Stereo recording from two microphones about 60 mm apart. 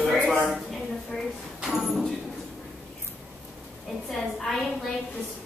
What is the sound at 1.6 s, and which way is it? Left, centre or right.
Speech, centre.